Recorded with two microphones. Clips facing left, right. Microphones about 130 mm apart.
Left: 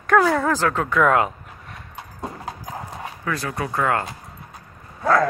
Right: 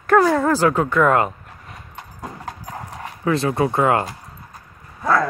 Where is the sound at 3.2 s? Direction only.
25° right (ahead or behind).